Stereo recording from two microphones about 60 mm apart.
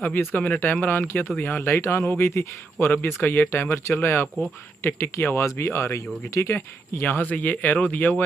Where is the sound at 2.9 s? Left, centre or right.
Left.